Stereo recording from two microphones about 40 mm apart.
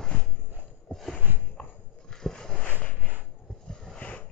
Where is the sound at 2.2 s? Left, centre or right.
Centre.